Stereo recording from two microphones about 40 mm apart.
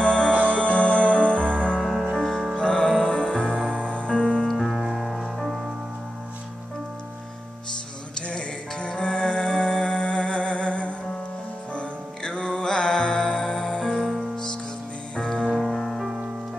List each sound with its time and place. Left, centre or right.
0.0 s music: left
0.3 s music: right
0.6 s music: left
1.8 s music: centre
2.1 s music: centre
2.5 s music: left
3.4 s music: right
3.9 s music: left
4.5 s music: centre
4.7 s music: centre
8.3 s music: left
15.1 s music: left
15.5 s music: centre